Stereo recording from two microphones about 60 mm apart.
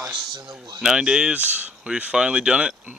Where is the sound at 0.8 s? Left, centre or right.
Centre.